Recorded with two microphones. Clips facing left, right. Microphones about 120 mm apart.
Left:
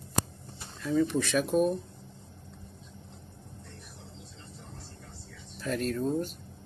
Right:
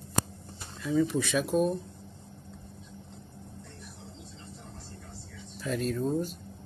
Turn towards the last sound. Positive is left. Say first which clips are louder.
# even
turn(degrees=-5)  # may be behind; listen again after turning